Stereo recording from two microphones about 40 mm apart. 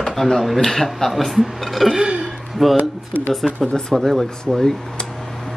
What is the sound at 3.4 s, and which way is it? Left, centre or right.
Speech, centre.